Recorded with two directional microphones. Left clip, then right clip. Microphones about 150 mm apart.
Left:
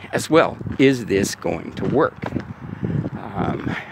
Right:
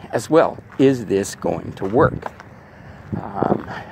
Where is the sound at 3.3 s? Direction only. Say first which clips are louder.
Right 4 dB; 20° left (ahead or behind).